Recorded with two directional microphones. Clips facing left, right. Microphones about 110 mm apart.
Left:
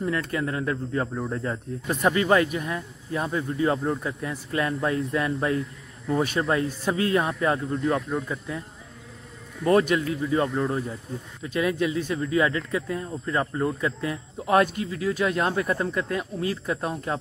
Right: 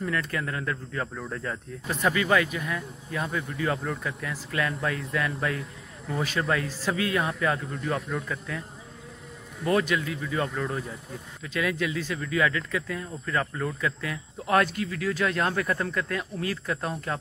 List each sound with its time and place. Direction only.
0.0 s speech: 25° left (ahead or behind)
2.1 s speech: 40° left (ahead or behind)
2.5 s speech: 30° left (ahead or behind)
9.7 s speech: 35° left (ahead or behind)